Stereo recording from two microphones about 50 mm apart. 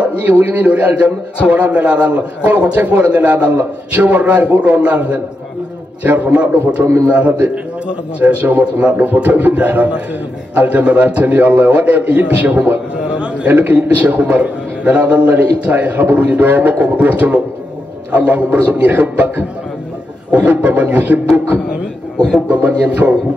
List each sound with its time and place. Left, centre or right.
0.0 s a man's voice: right
13.5 s a man's voice: right
22.5 s a man's voice: right